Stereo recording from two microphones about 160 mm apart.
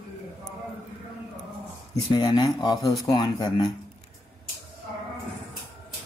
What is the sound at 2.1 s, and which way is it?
Speech, 25° left (ahead or behind).